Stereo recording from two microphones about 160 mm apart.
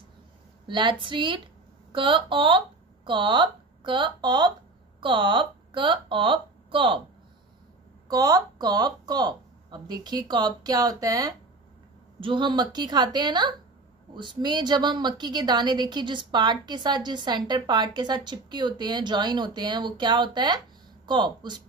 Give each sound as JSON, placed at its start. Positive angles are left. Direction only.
{"t": 0.7, "sound": "a woman's voice", "side_deg": -30}
{"t": 8.1, "sound": "a woman's voice", "side_deg": -20}